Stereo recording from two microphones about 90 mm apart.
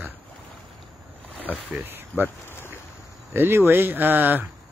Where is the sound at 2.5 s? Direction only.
25° left (ahead or behind).